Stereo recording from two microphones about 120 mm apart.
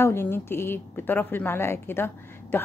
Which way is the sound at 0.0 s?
20° left (ahead or behind).